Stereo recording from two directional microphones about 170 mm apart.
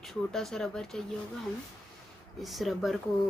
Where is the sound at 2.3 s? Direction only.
Centre (ahead or behind).